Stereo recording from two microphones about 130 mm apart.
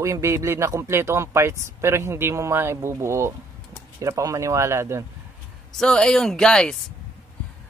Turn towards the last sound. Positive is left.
turn(degrees=5)  # may be behind; listen again after turning